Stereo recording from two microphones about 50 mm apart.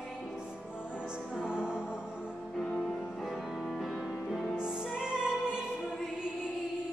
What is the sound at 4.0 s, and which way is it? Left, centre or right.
Music, centre.